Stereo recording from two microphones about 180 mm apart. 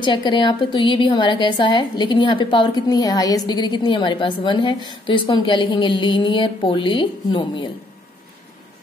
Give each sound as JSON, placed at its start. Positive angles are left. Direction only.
{"t": 0.0, "sound": "a woman's voice", "side_deg": 25}